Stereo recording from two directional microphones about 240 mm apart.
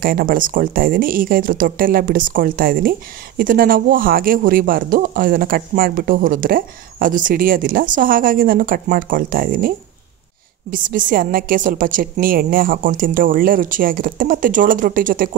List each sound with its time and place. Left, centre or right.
0.0 s speech: right